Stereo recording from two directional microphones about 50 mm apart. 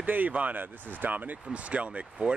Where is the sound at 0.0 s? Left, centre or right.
Right.